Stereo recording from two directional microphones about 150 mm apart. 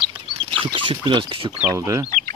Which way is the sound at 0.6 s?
35° right (ahead or behind).